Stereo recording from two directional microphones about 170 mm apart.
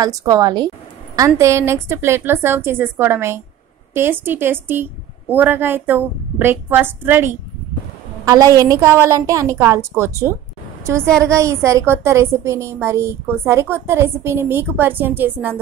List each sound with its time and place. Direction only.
0.0 s a woman's voice: 20° right (ahead or behind)